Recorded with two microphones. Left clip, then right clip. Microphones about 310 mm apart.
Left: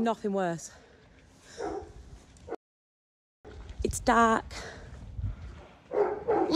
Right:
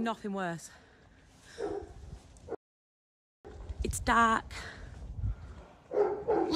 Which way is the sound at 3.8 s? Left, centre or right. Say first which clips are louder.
Left 3 dB; centre.